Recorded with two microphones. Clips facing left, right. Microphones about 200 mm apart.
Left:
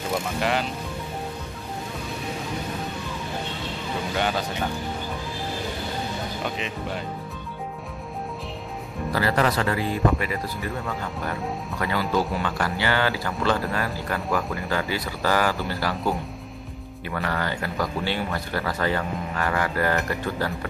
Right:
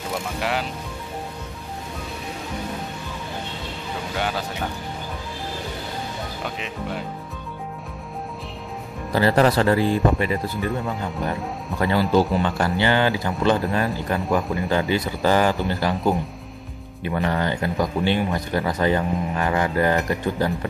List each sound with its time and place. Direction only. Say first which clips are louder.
0.4 s speech: left 1 dB; 5° right (ahead or behind)
4.2 s speech: left 1 dB; 5° right (ahead or behind)
9.1 s speech: right 5 dB; 30° right (ahead or behind)
11.8 s speech: right 6 dB; 30° right (ahead or behind)